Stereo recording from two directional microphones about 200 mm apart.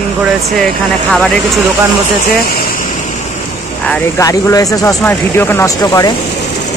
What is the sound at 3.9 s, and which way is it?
Speech, 10° left (ahead or behind).